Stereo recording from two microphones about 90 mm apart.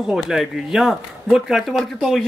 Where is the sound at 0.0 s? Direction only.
5° right (ahead or behind).